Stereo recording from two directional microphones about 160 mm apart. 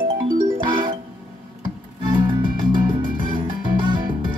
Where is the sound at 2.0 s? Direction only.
30° right (ahead or behind).